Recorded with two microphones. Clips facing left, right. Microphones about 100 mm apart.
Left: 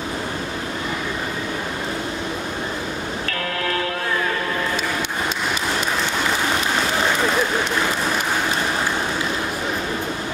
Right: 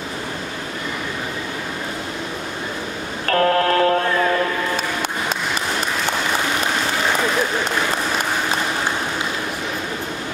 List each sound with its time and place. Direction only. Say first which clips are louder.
3.3 s music: right 12 dB; 45° right (ahead or behind)